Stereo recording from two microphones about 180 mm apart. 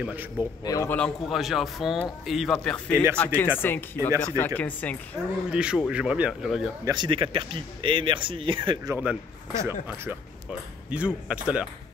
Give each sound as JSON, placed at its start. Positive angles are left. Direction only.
{"t": 0.0, "sound": "speech", "side_deg": -10}
{"t": 0.4, "sound": "a man's voice", "side_deg": 20}
{"t": 0.9, "sound": "speech", "side_deg": 5}
{"t": 2.9, "sound": "speech", "side_deg": -15}
{"t": 3.2, "sound": "speech", "side_deg": 10}
{"t": 5.5, "sound": "speech", "side_deg": -5}
{"t": 6.8, "sound": "speech", "side_deg": -20}
{"t": 8.9, "sound": "speech", "side_deg": -15}